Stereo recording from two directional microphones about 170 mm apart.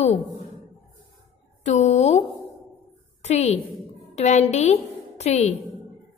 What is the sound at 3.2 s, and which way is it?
A woman's voice, 40° left (ahead or behind).